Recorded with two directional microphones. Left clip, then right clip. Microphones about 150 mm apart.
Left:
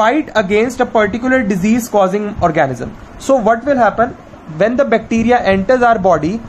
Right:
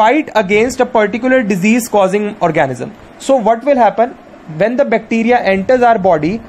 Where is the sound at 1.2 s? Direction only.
15° right (ahead or behind).